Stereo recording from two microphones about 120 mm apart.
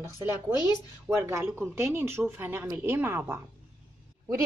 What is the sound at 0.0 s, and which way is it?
A woman's voice, 20° right (ahead or behind).